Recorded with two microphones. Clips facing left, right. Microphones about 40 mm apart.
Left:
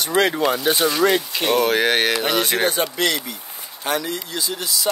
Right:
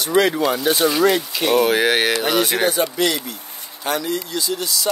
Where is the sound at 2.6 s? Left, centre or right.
Centre.